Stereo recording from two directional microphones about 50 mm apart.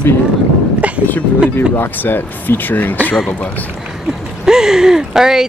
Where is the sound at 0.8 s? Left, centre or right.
Right.